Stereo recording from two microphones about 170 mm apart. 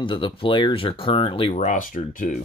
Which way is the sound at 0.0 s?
30° left (ahead or behind).